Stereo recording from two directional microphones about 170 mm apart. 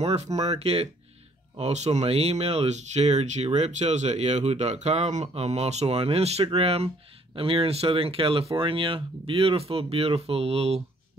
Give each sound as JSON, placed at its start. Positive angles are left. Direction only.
{"t": 0.0, "sound": "speech", "side_deg": -40}